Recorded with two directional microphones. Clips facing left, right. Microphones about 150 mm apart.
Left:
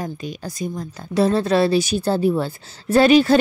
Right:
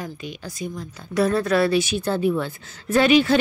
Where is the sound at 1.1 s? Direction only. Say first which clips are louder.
Left 2 dB; 30° left (ahead or behind).